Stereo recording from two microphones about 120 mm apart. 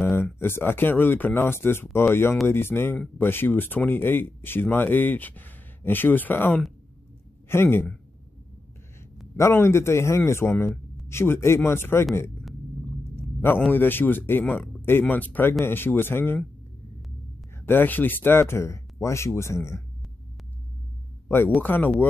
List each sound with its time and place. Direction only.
0.1 s a man's voice: 20° left (ahead or behind)
9.4 s speech: 20° left (ahead or behind)
13.7 s speech: 15° left (ahead or behind)
17.6 s speech: 15° left (ahead or behind)
21.5 s speech: 15° left (ahead or behind)